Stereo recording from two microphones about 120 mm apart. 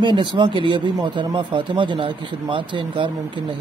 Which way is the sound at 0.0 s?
40° right (ahead or behind).